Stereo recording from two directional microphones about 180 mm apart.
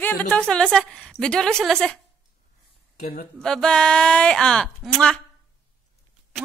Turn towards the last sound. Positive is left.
turn(degrees=5)  # may be behind; listen again after turning